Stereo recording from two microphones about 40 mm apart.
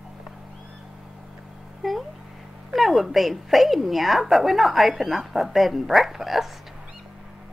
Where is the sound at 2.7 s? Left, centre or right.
Centre.